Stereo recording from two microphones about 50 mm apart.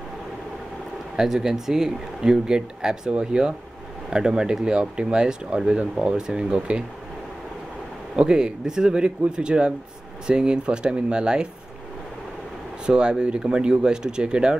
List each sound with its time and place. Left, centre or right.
1.1 s speech: centre
8.2 s speech: centre
12.8 s speech: centre